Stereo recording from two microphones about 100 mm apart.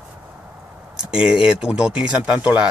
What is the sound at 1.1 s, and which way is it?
Speech, 5° right (ahead or behind).